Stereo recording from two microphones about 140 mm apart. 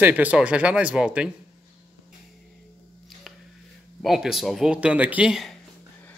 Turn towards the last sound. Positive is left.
turn(degrees=-5)  # may be behind; listen again after turning